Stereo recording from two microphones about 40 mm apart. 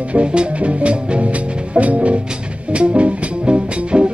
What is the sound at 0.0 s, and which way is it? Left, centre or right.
Music, right.